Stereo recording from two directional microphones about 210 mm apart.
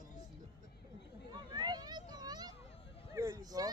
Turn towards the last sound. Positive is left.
turn(degrees=-15)  # may be behind; listen again after turning